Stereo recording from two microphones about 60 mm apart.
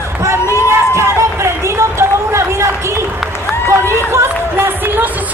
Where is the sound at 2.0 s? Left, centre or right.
Right.